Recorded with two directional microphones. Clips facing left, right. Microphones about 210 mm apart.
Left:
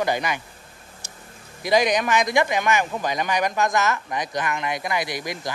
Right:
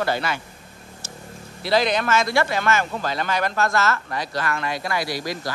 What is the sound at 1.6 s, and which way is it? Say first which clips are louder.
Speech: left 1 dB; 15° left (ahead or behind).